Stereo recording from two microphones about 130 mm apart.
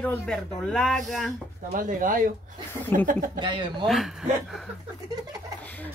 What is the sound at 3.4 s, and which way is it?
Speech, 35° right (ahead or behind).